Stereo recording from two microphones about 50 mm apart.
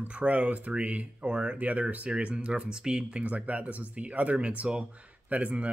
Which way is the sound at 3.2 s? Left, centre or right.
Right.